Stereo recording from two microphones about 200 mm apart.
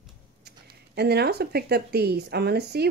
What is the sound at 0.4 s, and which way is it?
Speech, 55° right (ahead or behind).